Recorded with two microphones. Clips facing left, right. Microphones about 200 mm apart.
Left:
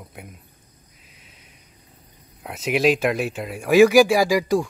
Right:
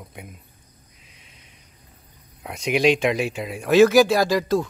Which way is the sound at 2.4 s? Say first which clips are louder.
Even; 5° left (ahead or behind).